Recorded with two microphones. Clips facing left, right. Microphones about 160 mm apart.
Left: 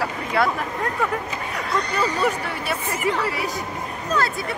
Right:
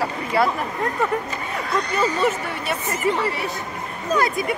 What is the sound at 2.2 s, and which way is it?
A woman's voice, centre (ahead or behind).